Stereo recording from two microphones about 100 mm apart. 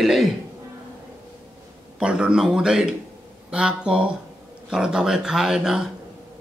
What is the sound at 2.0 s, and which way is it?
Speech, 10° right (ahead or behind).